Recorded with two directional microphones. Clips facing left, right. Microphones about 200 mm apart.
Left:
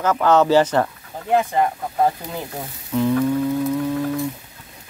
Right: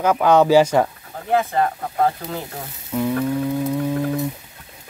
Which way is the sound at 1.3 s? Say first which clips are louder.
Left 1 dB; 15° left (ahead or behind).